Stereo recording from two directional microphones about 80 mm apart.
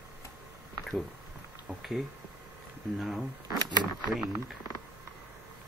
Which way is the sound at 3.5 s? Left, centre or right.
Right.